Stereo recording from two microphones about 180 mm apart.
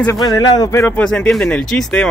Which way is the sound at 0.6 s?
15° left (ahead or behind).